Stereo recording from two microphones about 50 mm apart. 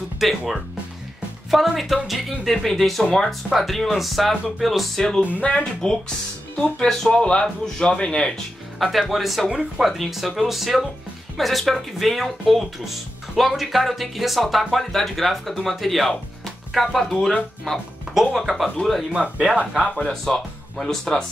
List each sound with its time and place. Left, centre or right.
0.2 s speech: centre
5.4 s speech: centre
8.7 s speech: centre
18.1 s speech: centre
18.8 s speech: centre
19.3 s speech: right
20.1 s speech: centre